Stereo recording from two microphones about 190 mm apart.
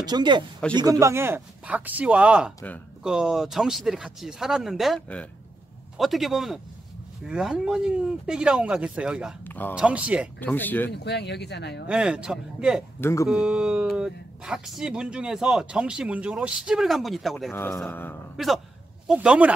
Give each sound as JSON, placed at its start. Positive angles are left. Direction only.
{"t": 0.0, "sound": "speech", "side_deg": -20}
{"t": 9.4, "sound": "a sound", "side_deg": 10}
{"t": 9.8, "sound": "speech", "side_deg": -5}
{"t": 10.4, "sound": "a man's voice", "side_deg": 10}
{"t": 10.9, "sound": "speech", "side_deg": 65}
{"t": 11.9, "sound": "speech", "side_deg": -5}
{"t": 13.0, "sound": "a man's voice", "side_deg": 15}
{"t": 13.3, "sound": "speech", "side_deg": -5}
{"t": 17.5, "sound": "a man's voice", "side_deg": 10}
{"t": 18.3, "sound": "speech", "side_deg": 0}